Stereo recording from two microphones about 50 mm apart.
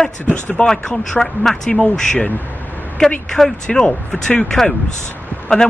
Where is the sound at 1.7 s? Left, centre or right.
Left.